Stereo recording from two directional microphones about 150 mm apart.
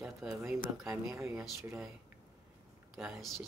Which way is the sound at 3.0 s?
Centre (ahead or behind).